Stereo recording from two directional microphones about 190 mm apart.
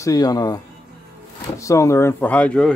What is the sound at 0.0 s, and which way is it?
Speech, 20° left (ahead or behind).